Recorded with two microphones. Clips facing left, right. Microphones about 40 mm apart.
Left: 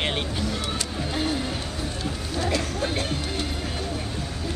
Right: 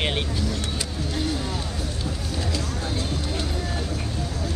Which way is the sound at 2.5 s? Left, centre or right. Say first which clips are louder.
Left 3 dB; left.